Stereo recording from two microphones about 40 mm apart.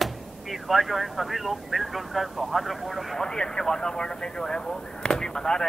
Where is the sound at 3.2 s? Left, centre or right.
Centre.